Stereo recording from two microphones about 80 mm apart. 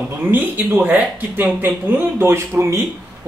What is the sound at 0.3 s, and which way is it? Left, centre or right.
Speech, right.